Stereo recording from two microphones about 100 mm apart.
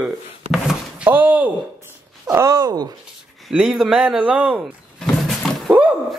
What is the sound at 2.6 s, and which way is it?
Speech, 45° right (ahead or behind).